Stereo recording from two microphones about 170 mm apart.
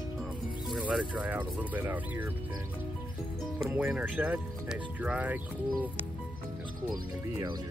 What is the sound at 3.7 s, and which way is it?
Speech, 5° right (ahead or behind).